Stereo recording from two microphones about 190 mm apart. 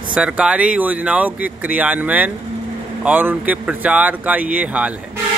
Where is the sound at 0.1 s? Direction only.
5° right (ahead or behind).